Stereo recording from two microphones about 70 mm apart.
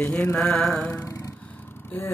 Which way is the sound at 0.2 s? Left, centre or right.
Centre.